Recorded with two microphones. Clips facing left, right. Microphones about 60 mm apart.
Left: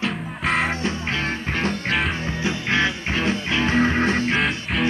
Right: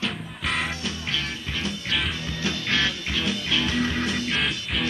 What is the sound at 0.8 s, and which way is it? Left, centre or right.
Music, left.